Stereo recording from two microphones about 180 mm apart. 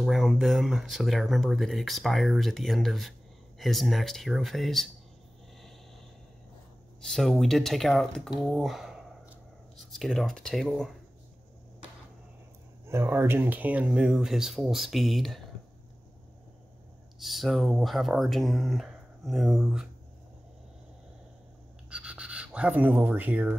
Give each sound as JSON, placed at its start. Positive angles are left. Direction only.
{"t": 0.0, "sound": "speech", "side_deg": 0}
{"t": 7.0, "sound": "speech", "side_deg": 0}
{"t": 12.8, "sound": "speech", "side_deg": -15}
{"t": 17.2, "sound": "speech", "side_deg": 0}
{"t": 21.8, "sound": "writing", "side_deg": -5}